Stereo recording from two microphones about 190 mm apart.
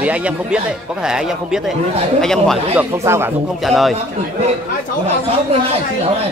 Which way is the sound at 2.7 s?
15° right (ahead or behind).